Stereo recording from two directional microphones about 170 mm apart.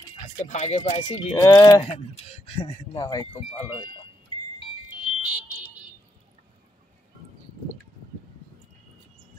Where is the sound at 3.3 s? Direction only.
35° left (ahead or behind).